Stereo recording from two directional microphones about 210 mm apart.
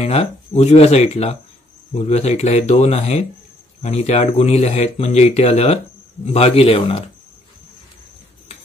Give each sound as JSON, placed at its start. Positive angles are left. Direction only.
{"t": 0.0, "sound": "speech", "side_deg": 30}